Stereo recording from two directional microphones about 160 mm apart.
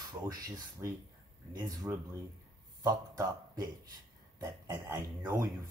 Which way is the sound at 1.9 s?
15° right (ahead or behind).